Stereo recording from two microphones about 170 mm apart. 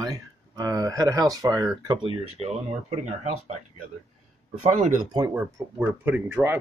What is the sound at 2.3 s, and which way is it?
Speech, 40° right (ahead or behind).